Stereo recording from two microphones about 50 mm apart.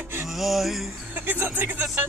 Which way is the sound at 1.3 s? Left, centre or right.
Right.